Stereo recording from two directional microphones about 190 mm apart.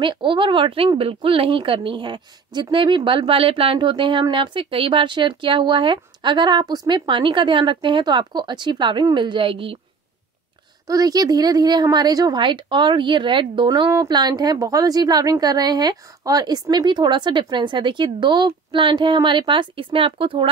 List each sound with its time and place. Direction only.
0.0 s speech: 25° right (ahead or behind)
10.9 s speech: 20° right (ahead or behind)